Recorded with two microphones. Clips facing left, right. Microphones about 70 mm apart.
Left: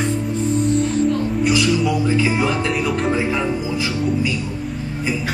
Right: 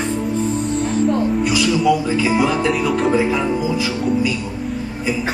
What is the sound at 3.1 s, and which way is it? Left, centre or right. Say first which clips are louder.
Speech: right 3 dB; centre.